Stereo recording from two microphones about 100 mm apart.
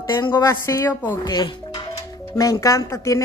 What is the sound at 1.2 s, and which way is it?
Speech, 45° left (ahead or behind).